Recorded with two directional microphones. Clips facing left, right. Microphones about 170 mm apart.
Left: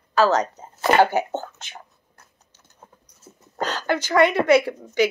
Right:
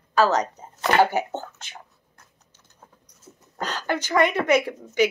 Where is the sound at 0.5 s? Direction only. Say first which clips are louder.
Left 3 dB; 5° left (ahead or behind).